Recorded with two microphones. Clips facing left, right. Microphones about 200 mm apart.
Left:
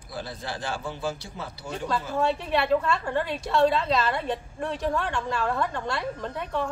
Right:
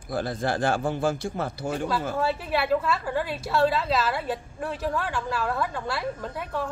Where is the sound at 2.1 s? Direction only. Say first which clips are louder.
Left 4 dB; 5° right (ahead or behind).